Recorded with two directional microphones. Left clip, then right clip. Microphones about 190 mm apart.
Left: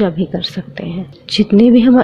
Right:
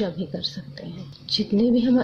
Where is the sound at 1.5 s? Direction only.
25° left (ahead or behind).